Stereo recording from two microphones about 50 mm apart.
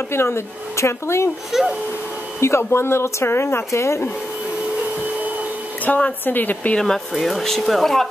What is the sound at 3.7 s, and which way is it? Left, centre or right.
Speech, left.